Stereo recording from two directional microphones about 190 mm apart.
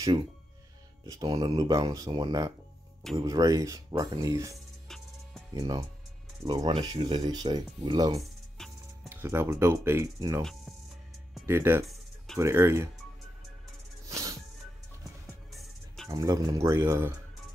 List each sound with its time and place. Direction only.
1.0 s speech: 20° right (ahead or behind)
4.8 s music: 5° left (ahead or behind)
5.6 s speech: 20° right (ahead or behind)
11.4 s speech: 10° right (ahead or behind)
14.0 s music: 15° right (ahead or behind)
16.1 s speech: 20° right (ahead or behind)